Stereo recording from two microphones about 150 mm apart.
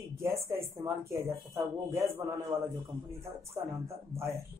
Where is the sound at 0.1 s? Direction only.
20° right (ahead or behind).